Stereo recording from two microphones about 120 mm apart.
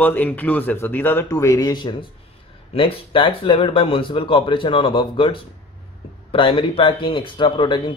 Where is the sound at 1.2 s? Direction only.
25° left (ahead or behind).